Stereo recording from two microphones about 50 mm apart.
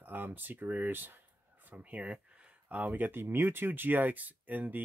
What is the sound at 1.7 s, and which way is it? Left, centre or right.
Speech, right.